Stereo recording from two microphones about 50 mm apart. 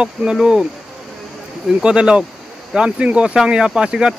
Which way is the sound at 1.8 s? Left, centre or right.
Centre.